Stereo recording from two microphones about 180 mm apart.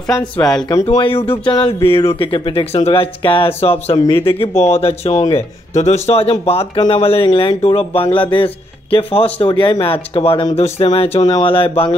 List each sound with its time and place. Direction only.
0.1 s speech: 20° left (ahead or behind)